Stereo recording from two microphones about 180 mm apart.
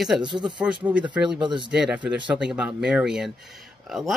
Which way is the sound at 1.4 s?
25° right (ahead or behind).